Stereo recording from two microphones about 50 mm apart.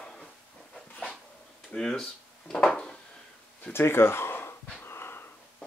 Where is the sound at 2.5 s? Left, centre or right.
Centre.